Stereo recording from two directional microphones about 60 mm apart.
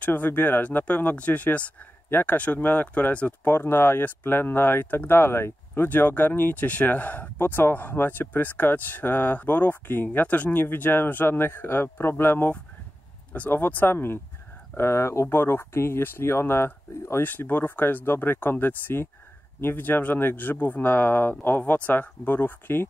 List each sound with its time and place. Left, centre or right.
0.0 s speech: left
3.4 s speech: left